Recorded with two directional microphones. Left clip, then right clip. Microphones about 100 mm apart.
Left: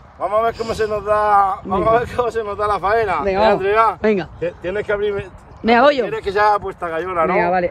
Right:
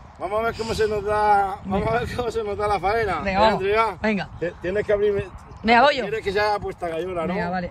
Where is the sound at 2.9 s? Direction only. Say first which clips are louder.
Left 6 dB; 75° left (ahead or behind).